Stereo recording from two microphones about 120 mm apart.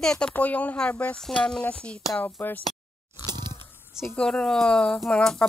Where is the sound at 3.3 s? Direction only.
35° right (ahead or behind).